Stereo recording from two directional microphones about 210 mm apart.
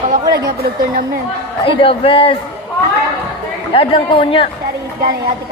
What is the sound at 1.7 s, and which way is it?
Speech, 25° left (ahead or behind).